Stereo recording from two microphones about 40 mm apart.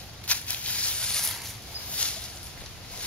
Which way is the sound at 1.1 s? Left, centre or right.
Centre.